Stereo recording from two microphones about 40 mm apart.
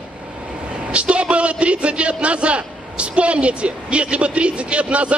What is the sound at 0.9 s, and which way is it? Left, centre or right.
A man's voice, right.